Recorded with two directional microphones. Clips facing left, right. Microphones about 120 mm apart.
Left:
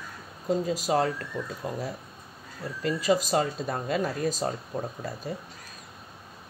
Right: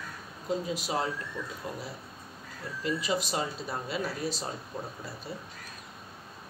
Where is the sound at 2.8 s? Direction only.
45° left (ahead or behind).